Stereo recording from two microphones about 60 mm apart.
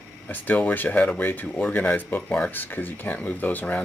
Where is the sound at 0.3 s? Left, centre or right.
Left.